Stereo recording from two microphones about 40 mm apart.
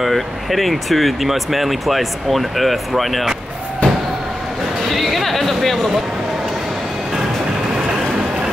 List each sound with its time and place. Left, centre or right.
0.0 s speech: centre
3.8 s a sound: left
4.9 s chatter: centre